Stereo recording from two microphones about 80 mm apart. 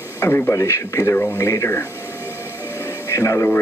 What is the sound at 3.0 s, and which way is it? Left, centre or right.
Speech, left.